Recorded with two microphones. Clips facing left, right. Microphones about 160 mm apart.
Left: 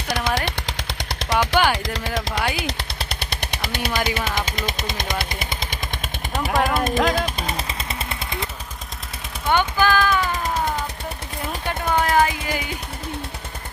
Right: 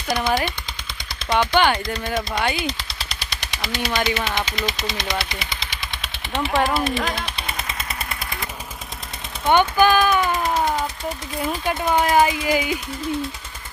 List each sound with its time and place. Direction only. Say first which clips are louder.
0.1 s speech: right 3 dB; 90° left
0.5 s machine gun: left 5 dB; 80° left
2.0 s speech: right 1 dB; 90° left
2.5 s machine gun: right 1 dB; 65° left (ahead or behind)
4.5 s speech: right 1 dB; 50° left (ahead or behind)
7.5 s machine gun: left 2 dB; 30° left (ahead or behind)
9.5 s speech: right 3 dB; 20° right (ahead or behind)
11.9 s speech: right 1 dB; 10° right (ahead or behind)